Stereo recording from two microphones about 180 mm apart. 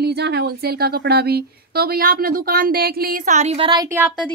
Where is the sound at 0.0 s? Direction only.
65° right (ahead or behind); by 4.0 s 20° right (ahead or behind).